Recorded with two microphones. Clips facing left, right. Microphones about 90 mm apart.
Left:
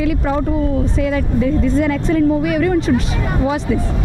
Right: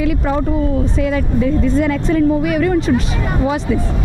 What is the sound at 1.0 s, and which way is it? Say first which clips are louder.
Speech: even; 25° right (ahead or behind).